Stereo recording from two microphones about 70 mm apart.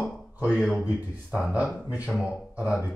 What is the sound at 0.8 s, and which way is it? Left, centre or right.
Speech, centre.